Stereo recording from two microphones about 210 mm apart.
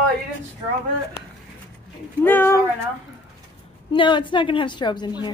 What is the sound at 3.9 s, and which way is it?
A woman's voice, 25° left (ahead or behind).